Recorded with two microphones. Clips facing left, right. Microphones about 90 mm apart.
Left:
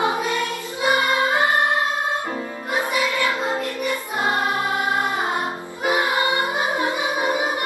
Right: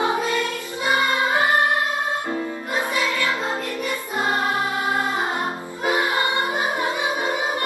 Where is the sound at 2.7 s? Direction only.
15° left (ahead or behind).